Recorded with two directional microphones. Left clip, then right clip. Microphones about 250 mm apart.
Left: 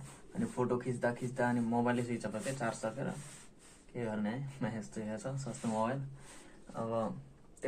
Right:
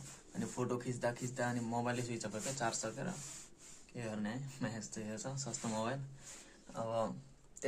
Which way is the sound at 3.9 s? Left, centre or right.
Centre.